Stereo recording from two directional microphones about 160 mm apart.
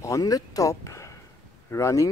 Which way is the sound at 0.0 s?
20° left (ahead or behind).